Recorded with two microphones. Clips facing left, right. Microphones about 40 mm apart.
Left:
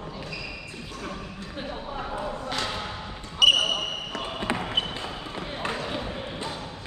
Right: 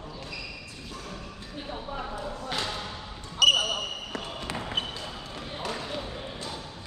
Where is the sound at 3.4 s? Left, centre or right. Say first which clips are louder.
Left 2 dB; centre.